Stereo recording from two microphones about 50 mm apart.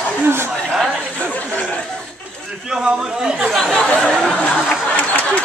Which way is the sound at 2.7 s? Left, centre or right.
Centre.